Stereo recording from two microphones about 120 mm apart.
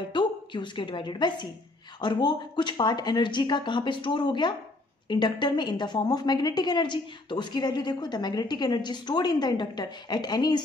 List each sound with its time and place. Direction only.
0.1 s a woman's voice: 40° left (ahead or behind)